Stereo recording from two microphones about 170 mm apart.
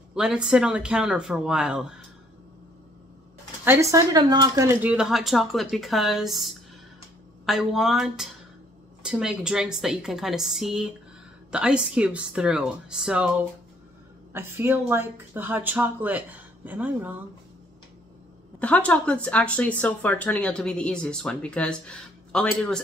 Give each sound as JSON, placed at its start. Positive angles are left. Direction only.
{"t": 0.1, "sound": "a woman's voice", "side_deg": -5}
{"t": 3.6, "sound": "a woman's voice", "side_deg": -15}
{"t": 4.8, "sound": "a woman's voice", "side_deg": -5}
{"t": 14.3, "sound": "speech", "side_deg": -15}
{"t": 18.6, "sound": "speech", "side_deg": 10}